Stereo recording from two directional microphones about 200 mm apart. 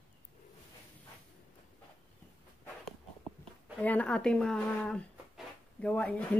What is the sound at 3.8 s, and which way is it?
Speech, 5° left (ahead or behind).